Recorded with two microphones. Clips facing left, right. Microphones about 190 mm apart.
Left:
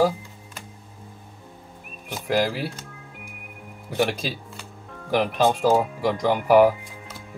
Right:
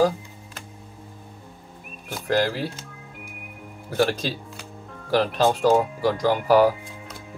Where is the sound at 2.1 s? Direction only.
10° left (ahead or behind).